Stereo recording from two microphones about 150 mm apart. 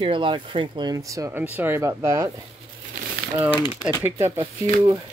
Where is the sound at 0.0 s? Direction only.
35° right (ahead or behind); by 2.2 s 20° right (ahead or behind).